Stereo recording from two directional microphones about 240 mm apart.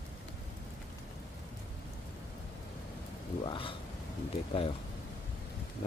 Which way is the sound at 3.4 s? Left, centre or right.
Left.